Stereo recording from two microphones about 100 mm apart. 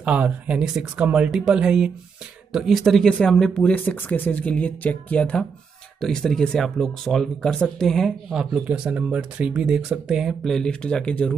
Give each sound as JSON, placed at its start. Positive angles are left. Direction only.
{"t": 0.0, "sound": "speech", "side_deg": -15}